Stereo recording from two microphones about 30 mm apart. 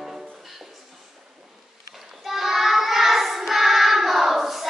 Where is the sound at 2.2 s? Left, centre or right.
Centre.